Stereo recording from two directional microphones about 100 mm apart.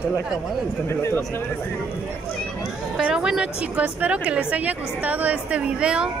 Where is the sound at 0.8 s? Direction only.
25° left (ahead or behind).